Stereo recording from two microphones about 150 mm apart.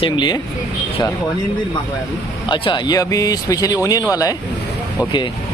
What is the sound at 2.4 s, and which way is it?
Speech, 30° left (ahead or behind).